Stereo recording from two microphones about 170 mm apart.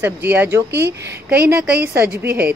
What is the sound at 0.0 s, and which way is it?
Speech, 10° right (ahead or behind).